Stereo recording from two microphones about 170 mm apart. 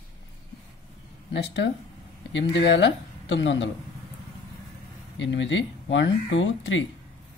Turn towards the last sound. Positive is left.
turn(degrees=90)